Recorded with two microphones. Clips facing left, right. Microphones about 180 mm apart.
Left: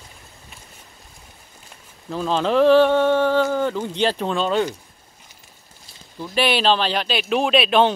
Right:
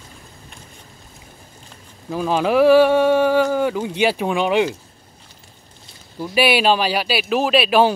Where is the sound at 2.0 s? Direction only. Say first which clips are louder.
Right 2 dB; 10° right (ahead or behind).